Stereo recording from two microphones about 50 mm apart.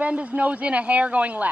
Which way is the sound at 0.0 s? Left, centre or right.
Right.